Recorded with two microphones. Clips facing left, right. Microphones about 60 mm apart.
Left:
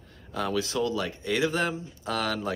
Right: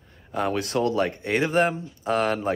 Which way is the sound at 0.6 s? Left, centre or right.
Right.